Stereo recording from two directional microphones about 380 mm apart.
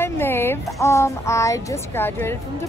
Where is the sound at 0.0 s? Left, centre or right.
Centre.